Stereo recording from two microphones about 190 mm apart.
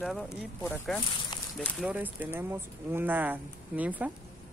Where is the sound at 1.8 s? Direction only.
10° right (ahead or behind).